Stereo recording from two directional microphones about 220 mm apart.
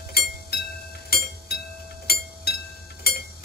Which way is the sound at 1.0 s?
45° left (ahead or behind).